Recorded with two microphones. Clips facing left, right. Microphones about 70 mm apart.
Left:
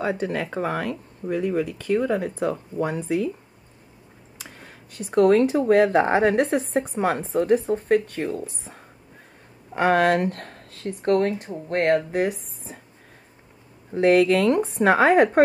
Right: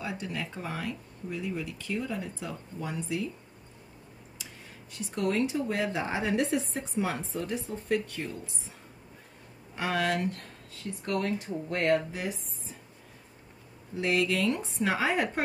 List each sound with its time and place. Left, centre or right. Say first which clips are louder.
0.0 s speech: left 10 dB; left
4.4 s speech: left 6 dB; left
9.8 s speech: left 10 dB; left
13.9 s speech: left 11 dB; left